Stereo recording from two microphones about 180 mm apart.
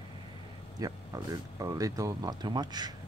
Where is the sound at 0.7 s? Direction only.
20° right (ahead or behind).